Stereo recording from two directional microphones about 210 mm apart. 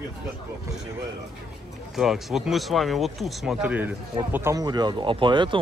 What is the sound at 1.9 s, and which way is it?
Speech, centre (ahead or behind).